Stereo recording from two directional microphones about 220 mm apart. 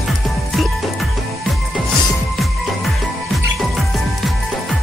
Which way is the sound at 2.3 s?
Centre (ahead or behind).